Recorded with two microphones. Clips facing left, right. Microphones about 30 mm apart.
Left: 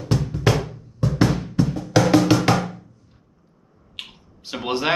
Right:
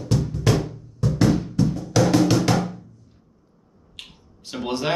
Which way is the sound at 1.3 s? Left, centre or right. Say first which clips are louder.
Right 1 dB; left.